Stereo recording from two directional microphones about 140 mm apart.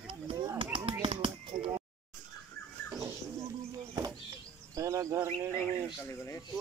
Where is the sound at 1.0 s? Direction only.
40° right (ahead or behind).